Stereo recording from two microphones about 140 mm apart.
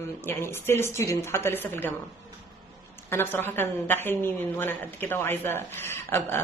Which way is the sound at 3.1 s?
15° left (ahead or behind).